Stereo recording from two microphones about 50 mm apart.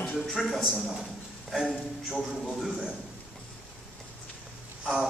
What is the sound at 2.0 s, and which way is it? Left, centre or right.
Speech, centre.